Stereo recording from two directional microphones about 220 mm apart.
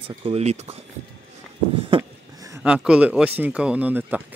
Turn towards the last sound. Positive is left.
turn(degrees=-5)  # may be behind; listen again after turning